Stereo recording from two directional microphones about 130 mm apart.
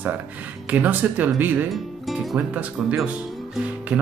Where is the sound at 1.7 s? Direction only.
Centre (ahead or behind).